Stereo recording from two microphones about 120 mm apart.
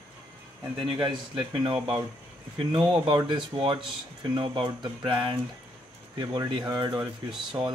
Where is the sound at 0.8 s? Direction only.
45° right (ahead or behind).